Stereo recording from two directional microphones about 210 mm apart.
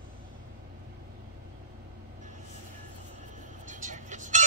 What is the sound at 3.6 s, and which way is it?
Vehicle, 35° right (ahead or behind).